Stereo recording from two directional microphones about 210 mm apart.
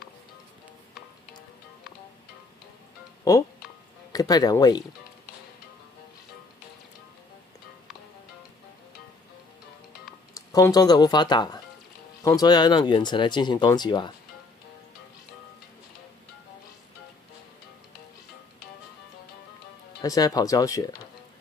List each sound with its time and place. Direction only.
4.1 s speech: 20° left (ahead or behind)
10.3 s speech: 15° left (ahead or behind)
20.0 s speech: 15° left (ahead or behind)